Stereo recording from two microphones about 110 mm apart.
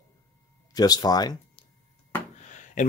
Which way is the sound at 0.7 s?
35° left (ahead or behind).